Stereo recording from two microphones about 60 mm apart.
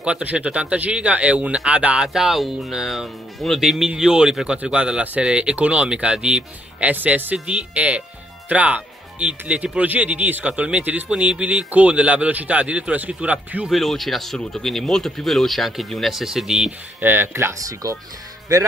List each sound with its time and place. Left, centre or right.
0.0 s speech: right
2.0 s speech: centre
6.8 s speech: right
13.7 s speech: centre
17.0 s speech: right
17.8 s speech: right